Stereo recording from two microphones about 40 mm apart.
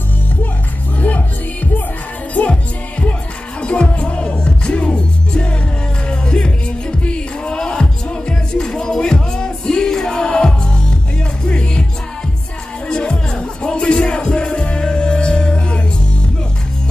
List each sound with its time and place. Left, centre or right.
0.9 s music: left
2.5 s music: left
12.8 s music: left